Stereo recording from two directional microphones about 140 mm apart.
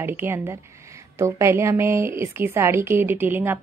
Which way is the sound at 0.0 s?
15° right (ahead or behind).